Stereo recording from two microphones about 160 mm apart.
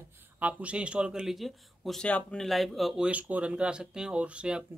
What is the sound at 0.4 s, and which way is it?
Speech, 10° right (ahead or behind).